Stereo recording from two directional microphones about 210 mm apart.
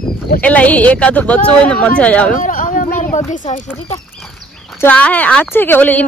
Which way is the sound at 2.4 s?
40° left (ahead or behind).